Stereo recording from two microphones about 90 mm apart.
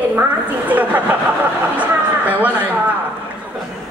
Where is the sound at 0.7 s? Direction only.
20° right (ahead or behind).